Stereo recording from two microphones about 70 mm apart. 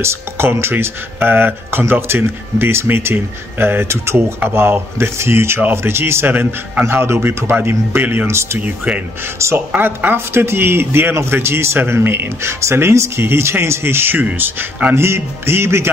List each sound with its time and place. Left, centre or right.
0.0 s a man's voice: right
8.5 s a man's voice: right
15.0 s a man's voice: right